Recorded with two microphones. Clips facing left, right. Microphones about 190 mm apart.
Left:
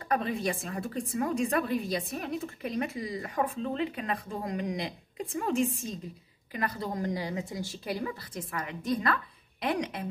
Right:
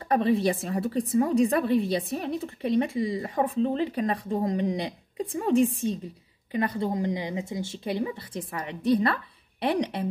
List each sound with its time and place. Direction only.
0.1 s a woman's voice: 30° right (ahead or behind)